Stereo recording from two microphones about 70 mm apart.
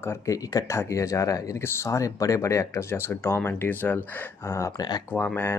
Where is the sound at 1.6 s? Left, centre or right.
Left.